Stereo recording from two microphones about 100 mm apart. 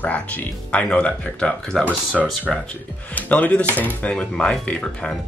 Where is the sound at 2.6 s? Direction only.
15° left (ahead or behind).